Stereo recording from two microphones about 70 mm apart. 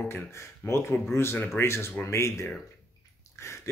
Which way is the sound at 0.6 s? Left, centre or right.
Left.